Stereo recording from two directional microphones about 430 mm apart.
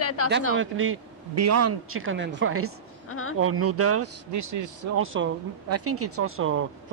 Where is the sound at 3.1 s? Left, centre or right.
Left.